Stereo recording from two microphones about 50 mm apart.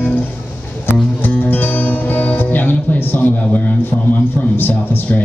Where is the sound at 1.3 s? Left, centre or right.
Left.